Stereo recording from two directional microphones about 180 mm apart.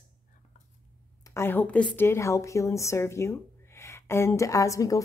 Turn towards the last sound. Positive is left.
turn(degrees=20)  # may be behind; listen again after turning